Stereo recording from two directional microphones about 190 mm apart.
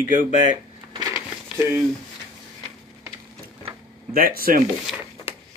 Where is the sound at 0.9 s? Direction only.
15° right (ahead or behind).